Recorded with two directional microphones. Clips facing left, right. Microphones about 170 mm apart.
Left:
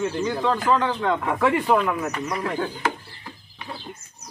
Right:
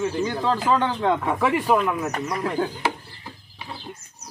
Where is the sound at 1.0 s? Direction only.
20° right (ahead or behind).